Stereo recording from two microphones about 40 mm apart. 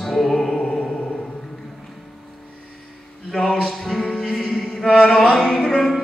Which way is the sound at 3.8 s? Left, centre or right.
Centre.